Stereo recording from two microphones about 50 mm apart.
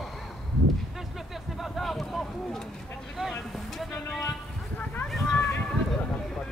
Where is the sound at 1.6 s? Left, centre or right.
Centre.